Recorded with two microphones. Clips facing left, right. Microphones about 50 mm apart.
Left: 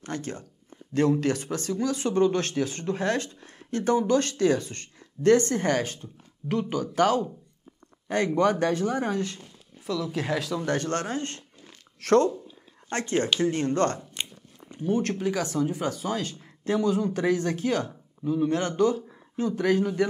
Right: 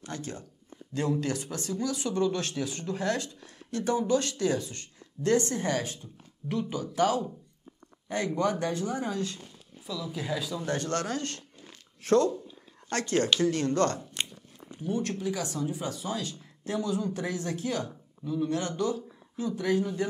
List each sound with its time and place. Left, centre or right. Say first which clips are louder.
0.0 s speech: left 4 dB; left
8.4 s speech: left 6 dB; left
10.1 s speech: left 5 dB; left
12.0 s speech: left 3 dB; left
12.9 s speech: left 1 dB; left
14.2 s a sound: even; centre
14.8 s speech: left 5 dB; left